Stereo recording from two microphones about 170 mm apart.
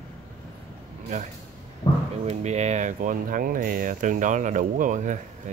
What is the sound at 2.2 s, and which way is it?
Speech, 40° right (ahead or behind).